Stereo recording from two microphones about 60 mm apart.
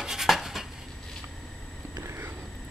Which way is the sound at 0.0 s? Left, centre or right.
Centre.